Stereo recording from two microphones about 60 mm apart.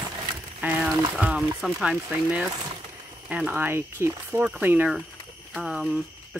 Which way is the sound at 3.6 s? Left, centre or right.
Right.